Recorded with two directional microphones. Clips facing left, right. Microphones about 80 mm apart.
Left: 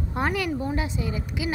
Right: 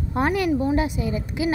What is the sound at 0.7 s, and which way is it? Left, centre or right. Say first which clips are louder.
Speech: right 5 dB; right.